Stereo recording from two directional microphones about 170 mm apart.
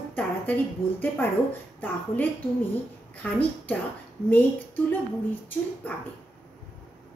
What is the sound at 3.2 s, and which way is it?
A woman's voice, 10° left (ahead or behind).